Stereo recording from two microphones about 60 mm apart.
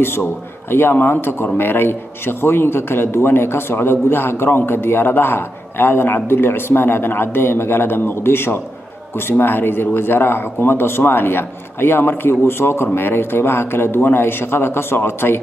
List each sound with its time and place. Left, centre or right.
0.0 s speech: left